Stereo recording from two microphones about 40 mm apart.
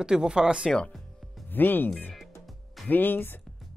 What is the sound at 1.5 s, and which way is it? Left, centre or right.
Speech, left.